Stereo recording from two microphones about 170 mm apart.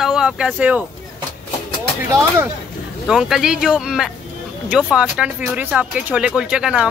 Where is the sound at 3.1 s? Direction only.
Centre (ahead or behind).